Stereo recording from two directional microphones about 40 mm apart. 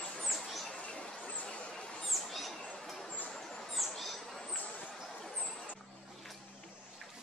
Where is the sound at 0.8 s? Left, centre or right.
Left.